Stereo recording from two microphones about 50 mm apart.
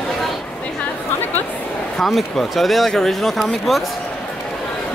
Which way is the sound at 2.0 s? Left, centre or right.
Centre.